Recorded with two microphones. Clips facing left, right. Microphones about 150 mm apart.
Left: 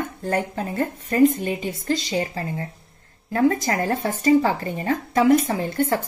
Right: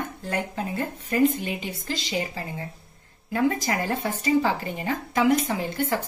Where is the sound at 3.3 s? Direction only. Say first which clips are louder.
Left 4 dB; 40° left (ahead or behind).